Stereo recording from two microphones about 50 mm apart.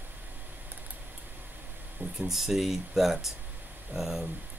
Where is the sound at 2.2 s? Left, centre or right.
Centre.